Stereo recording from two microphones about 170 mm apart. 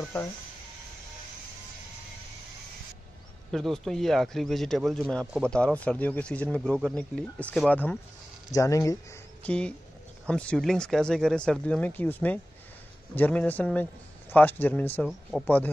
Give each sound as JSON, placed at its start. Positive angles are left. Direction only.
{"t": 3.5, "sound": "speech", "side_deg": 0}
{"t": 8.5, "sound": "speech", "side_deg": 20}
{"t": 9.4, "sound": "speech", "side_deg": 5}